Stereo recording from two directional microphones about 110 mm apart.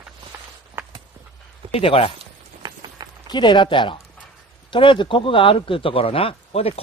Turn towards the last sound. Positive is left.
turn(degrees=60)  # may be behind; listen again after turning